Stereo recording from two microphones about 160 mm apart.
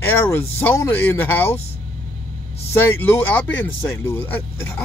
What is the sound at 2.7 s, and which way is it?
Speech, 15° left (ahead or behind).